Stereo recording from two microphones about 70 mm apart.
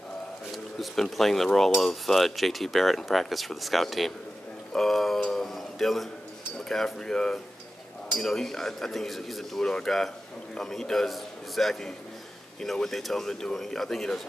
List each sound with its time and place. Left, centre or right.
0.7 s speech: centre
6.7 s cutlery: centre
8.2 s speech: centre